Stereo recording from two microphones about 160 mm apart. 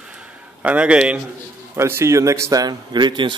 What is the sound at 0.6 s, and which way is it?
A man's voice, 5° right (ahead or behind).